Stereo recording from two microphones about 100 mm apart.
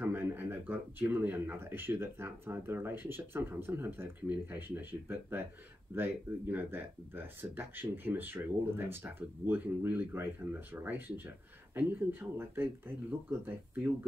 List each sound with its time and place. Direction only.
0.0 s speech: 20° right (ahead or behind)